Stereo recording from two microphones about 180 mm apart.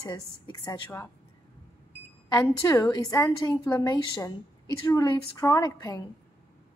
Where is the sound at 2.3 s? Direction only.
15° left (ahead or behind).